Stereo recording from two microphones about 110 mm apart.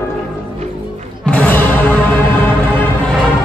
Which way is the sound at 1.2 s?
10° left (ahead or behind).